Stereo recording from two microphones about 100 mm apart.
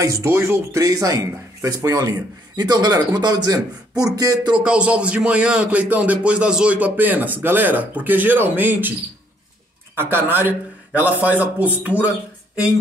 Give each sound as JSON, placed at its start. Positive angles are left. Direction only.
{"t": 0.0, "sound": "speech", "side_deg": -35}
{"t": 4.6, "sound": "speech", "side_deg": -10}
{"t": 9.9, "sound": "speech", "side_deg": -20}